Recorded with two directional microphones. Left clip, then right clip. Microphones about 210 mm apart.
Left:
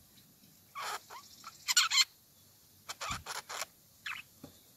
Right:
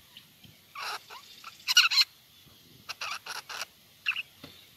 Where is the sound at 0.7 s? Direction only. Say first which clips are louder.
Right 3 dB; 5° left (ahead or behind).